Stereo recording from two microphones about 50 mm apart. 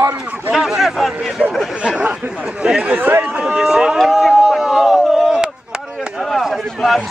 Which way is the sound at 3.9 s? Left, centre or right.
Centre.